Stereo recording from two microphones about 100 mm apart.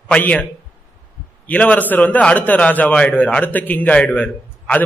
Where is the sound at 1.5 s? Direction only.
15° left (ahead or behind).